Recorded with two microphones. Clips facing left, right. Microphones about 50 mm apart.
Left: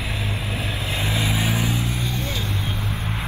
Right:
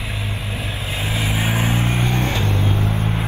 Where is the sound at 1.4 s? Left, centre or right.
Right.